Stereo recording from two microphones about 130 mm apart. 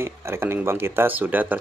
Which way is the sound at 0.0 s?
20° right (ahead or behind).